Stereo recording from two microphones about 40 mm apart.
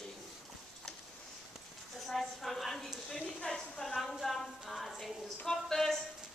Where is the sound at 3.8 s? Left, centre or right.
Centre.